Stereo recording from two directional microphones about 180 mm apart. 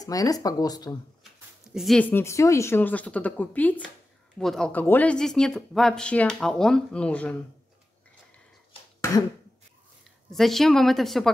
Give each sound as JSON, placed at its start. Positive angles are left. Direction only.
{"t": 0.0, "sound": "speech", "side_deg": 20}
{"t": 1.7, "sound": "speech", "side_deg": 0}
{"t": 10.3, "sound": "speech", "side_deg": 0}